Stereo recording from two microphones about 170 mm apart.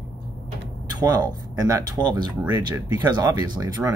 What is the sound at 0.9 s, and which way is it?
Speech, 25° right (ahead or behind).